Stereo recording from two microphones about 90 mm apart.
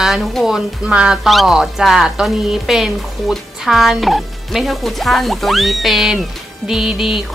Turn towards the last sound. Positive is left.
turn(degrees=-5)  # may be behind; listen again after turning